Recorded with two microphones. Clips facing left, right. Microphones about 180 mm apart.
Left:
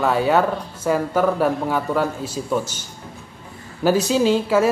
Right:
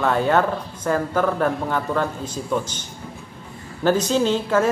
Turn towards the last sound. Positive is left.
turn(degrees=10)  # may be behind; listen again after turning